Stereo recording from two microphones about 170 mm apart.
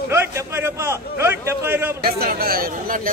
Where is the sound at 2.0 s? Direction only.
65° right (ahead or behind).